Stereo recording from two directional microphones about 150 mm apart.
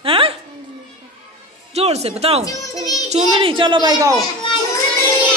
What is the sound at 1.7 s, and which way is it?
Speech, 45° right (ahead or behind).